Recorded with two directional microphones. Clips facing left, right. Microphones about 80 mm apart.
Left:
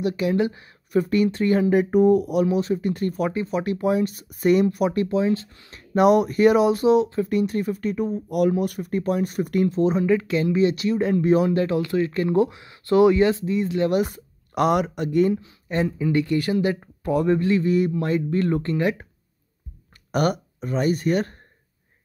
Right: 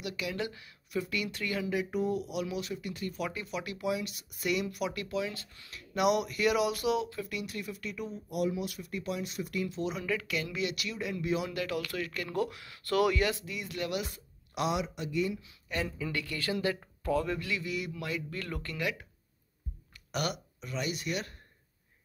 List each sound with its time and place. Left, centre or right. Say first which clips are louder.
0.0 s speech: left 14 dB; left
8.3 s speech: left 10 dB; left
13.8 s speech: left 13 dB; left
17.3 s speech: left 15 dB; left
20.1 s speech: left 12 dB; left